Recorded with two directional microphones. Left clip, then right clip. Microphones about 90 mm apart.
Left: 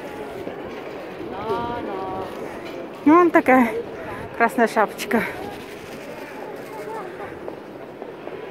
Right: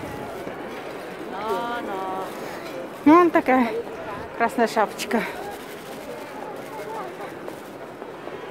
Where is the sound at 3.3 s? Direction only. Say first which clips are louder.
Left 4 dB; 10° left (ahead or behind).